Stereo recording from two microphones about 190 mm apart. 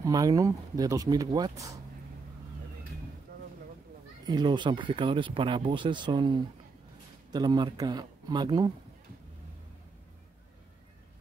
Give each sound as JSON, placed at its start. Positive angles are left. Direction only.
{"t": 0.0, "sound": "speech", "side_deg": -20}
{"t": 4.3, "sound": "speech", "side_deg": -25}